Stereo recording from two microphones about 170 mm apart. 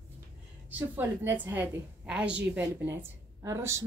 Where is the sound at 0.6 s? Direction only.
10° right (ahead or behind).